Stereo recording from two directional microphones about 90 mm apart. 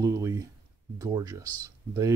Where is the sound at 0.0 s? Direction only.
40° right (ahead or behind).